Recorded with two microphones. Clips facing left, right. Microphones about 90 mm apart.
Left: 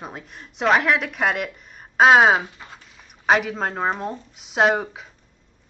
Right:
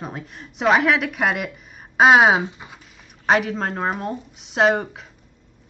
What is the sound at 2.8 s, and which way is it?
Speech, centre (ahead or behind).